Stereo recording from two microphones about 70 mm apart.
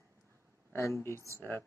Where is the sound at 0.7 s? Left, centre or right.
Left.